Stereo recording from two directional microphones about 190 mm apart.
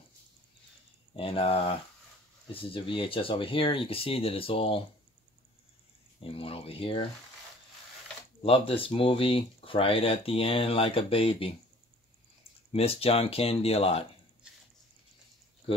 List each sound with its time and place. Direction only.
1.1 s speech: 30° left (ahead or behind)
6.1 s speech: 30° left (ahead or behind)
8.4 s speech: 30° left (ahead or behind)
12.7 s speech: 30° left (ahead or behind)